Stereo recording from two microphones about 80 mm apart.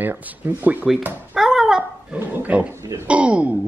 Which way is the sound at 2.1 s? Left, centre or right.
Right.